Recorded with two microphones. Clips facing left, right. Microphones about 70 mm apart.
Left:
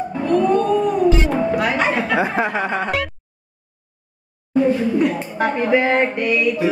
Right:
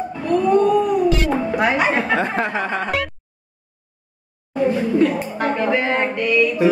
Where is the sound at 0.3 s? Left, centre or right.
Centre.